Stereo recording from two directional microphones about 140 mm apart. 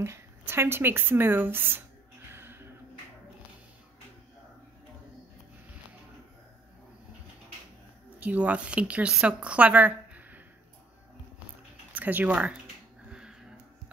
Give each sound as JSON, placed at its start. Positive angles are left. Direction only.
{"t": 0.0, "sound": "speech", "side_deg": -20}
{"t": 2.3, "sound": "music", "side_deg": -15}
{"t": 8.2, "sound": "speech", "side_deg": -10}
{"t": 11.9, "sound": "speech", "side_deg": -10}
{"t": 13.1, "sound": "music", "side_deg": -5}